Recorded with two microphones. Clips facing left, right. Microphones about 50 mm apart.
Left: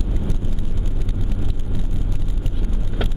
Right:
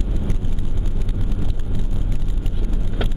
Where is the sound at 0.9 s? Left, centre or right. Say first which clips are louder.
Right 1 dB; centre.